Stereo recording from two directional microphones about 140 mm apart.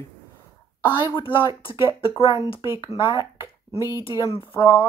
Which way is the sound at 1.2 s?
35° left (ahead or behind).